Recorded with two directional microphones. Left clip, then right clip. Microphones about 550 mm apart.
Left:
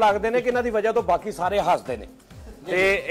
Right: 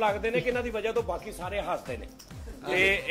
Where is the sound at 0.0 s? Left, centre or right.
Centre.